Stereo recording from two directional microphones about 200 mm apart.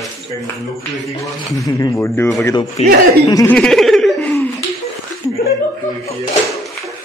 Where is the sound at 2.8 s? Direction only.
35° left (ahead or behind).